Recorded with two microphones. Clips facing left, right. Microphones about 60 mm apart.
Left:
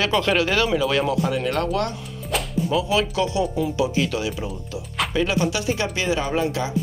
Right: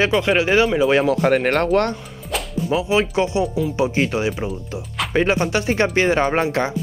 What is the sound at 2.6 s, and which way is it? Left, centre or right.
Speech, right.